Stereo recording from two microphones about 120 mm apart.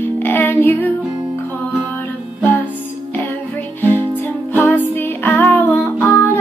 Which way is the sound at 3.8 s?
15° left (ahead or behind).